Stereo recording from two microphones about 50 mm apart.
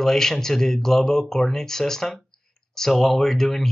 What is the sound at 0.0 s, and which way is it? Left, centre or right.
Speech, centre.